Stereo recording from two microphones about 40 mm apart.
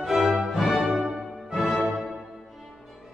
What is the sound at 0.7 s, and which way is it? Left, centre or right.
Music, right.